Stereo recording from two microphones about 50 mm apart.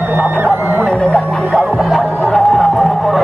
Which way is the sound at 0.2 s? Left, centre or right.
Right.